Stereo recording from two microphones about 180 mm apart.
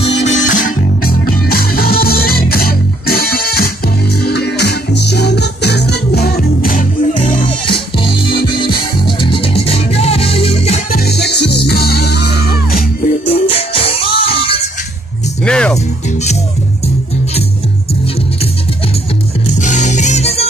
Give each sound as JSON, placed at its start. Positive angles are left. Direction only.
{"t": 0.0, "sound": "music", "side_deg": 40}
{"t": 7.4, "sound": "music", "side_deg": 30}
{"t": 10.9, "sound": "music", "side_deg": 65}
{"t": 13.3, "sound": "music", "side_deg": 35}
{"t": 15.4, "sound": "music", "side_deg": 5}
{"t": 19.6, "sound": "music", "side_deg": 40}